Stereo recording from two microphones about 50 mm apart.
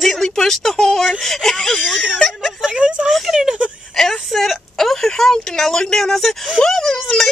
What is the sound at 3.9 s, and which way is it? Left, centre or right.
A man's voice, centre.